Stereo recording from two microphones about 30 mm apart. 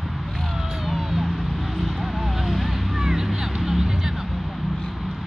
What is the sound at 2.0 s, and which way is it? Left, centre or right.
Vehicle, centre.